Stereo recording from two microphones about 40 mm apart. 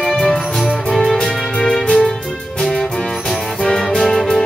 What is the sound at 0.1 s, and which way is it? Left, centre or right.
Music, centre.